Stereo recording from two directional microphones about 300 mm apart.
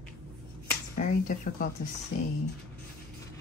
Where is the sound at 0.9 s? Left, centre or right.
Left.